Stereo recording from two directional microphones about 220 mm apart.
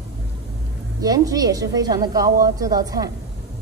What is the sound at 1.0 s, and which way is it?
A woman's voice, 15° right (ahead or behind).